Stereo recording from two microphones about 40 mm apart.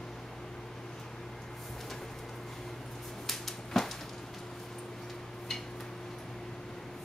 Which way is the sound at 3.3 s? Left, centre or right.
Centre.